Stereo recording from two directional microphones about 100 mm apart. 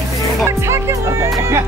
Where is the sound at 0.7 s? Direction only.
25° right (ahead or behind).